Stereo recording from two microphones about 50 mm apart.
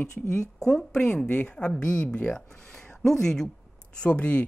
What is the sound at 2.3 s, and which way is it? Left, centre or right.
Speech, centre.